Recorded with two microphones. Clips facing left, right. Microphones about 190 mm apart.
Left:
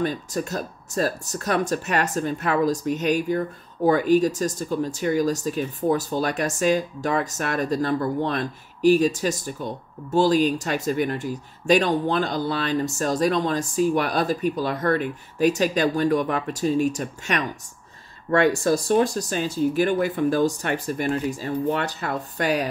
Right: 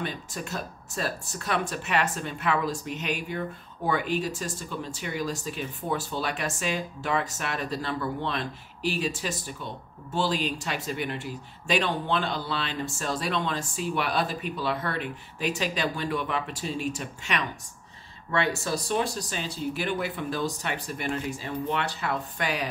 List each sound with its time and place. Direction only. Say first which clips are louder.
0.0 s speech: left 9 dB; 40° left (ahead or behind)